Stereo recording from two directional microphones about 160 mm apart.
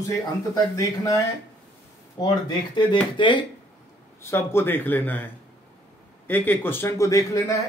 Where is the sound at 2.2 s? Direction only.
25° left (ahead or behind).